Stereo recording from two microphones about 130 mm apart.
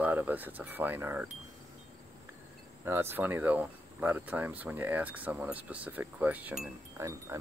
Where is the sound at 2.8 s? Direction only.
15° right (ahead or behind).